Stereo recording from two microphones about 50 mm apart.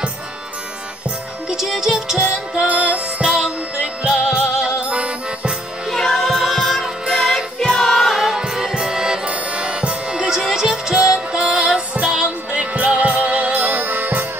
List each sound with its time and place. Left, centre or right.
1.5 s music: centre
5.9 s music: centre; by 14.2 s right